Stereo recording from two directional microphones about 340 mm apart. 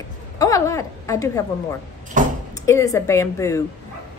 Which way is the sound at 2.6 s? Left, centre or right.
Centre.